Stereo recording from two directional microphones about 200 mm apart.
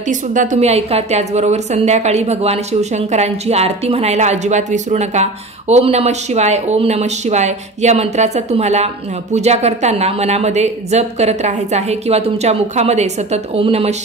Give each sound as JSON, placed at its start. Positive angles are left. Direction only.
{"t": 0.1, "sound": "a woman's voice", "side_deg": -40}